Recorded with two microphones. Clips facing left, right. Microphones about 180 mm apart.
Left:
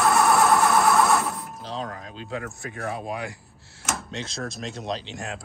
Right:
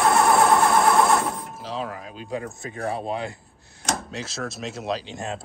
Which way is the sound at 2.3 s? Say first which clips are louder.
Right 2 dB; 20° right (ahead or behind).